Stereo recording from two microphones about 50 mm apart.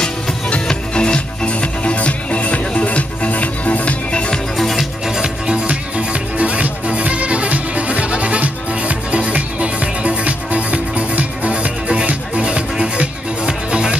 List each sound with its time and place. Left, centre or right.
0.0 s music: centre
4.6 s music: centre
5.0 s music: centre
5.5 s music: right